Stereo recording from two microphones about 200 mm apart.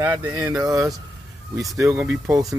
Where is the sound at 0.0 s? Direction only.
20° right (ahead or behind).